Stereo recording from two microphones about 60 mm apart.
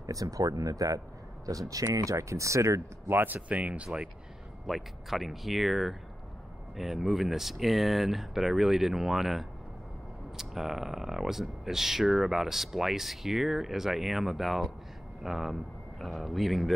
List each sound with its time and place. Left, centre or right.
0.0 s speech: right
3.1 s speech: right
3.3 s speech: right
4.6 s speech: centre